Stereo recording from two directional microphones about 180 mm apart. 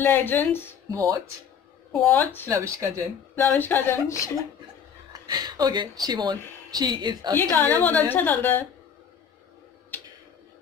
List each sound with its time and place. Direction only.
0.0 s a woman's voice: 10° left (ahead or behind)
1.9 s a woman's voice: 5° left (ahead or behind)
2.5 s speech: 15° right (ahead or behind)
3.3 s a woman's voice: 10° left (ahead or behind)
5.1 s speech: 20° right (ahead or behind)
7.3 s a woman's voice: 10° left (ahead or behind)